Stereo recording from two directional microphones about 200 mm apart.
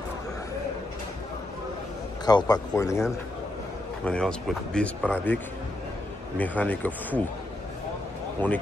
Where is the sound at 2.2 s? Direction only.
20° left (ahead or behind).